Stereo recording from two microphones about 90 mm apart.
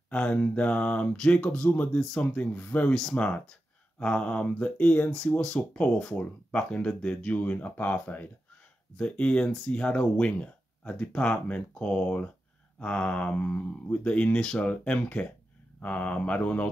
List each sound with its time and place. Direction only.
0.1 s speech: 15° left (ahead or behind)
3.0 s speech: 5° left (ahead or behind)